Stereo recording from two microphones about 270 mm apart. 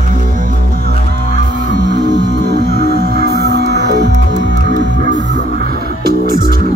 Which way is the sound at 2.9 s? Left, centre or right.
Right.